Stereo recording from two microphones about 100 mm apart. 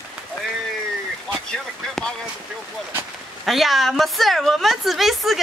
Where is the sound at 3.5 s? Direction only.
Centre (ahead or behind).